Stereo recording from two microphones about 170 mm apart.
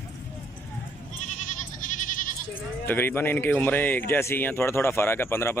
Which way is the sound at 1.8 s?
50° left (ahead or behind).